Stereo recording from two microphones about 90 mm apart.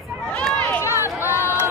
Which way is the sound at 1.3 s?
30° left (ahead or behind).